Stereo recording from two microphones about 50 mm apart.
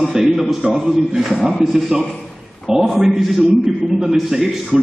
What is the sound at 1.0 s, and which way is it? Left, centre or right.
Speech, centre.